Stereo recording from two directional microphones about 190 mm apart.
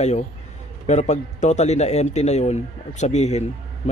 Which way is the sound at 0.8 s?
35° left (ahead or behind).